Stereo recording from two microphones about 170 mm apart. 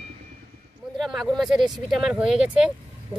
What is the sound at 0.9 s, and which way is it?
Speech, centre (ahead or behind).